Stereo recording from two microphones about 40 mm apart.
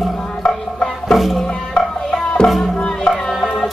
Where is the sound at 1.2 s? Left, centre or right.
Centre.